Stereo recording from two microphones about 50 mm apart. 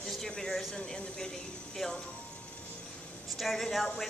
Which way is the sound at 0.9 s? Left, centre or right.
Centre.